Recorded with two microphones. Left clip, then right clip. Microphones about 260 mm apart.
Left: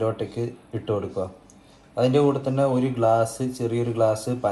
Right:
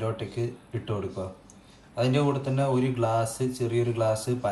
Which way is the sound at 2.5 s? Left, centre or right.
Centre.